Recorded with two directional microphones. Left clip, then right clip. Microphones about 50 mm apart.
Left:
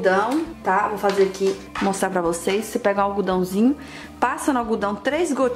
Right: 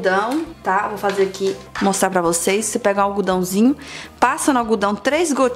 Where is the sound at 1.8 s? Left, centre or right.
Right.